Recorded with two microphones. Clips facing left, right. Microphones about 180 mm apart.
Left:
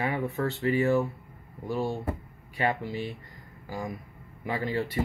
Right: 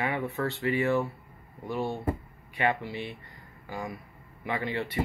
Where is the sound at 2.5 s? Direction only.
40° left (ahead or behind).